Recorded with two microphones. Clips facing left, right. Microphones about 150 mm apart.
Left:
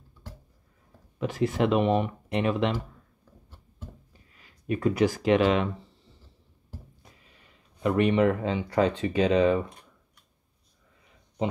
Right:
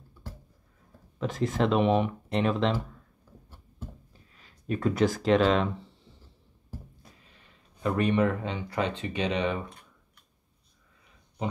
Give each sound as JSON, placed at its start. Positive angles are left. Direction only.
{"t": 1.2, "sound": "speech", "side_deg": 10}
{"t": 4.6, "sound": "speech", "side_deg": 10}
{"t": 7.8, "sound": "speech", "side_deg": 20}